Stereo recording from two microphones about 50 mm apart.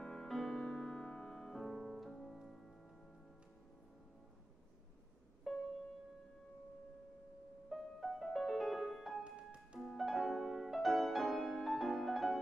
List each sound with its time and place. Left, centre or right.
0.0 s music: centre
2.0 s music: centre
5.5 s music: centre
7.7 s music: centre
9.2 s music: right
9.8 s music: centre